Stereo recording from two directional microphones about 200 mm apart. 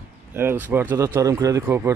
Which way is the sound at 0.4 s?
10° right (ahead or behind).